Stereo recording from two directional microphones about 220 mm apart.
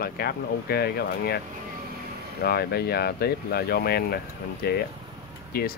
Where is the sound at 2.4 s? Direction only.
45° left (ahead or behind).